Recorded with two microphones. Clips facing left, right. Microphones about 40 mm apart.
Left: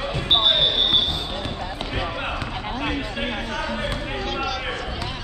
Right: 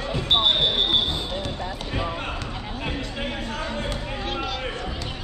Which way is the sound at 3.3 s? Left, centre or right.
Left.